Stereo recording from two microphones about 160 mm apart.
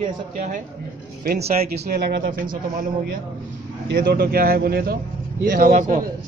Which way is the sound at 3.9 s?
75° right (ahead or behind).